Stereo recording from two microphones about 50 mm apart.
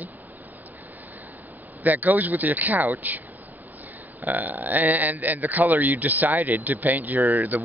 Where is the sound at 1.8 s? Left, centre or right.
Right.